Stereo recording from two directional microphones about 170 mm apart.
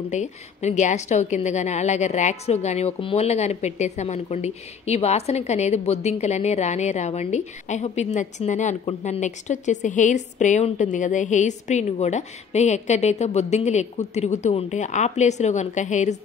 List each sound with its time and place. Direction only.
0.1 s a woman's voice: 45° left (ahead or behind)